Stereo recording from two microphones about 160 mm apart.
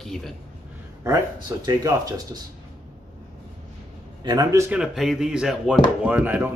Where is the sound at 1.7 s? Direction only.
20° right (ahead or behind).